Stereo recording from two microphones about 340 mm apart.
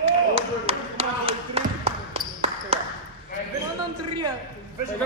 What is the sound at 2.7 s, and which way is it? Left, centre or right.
Ping, centre.